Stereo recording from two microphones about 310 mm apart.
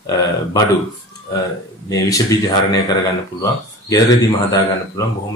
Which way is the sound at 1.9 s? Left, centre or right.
Centre.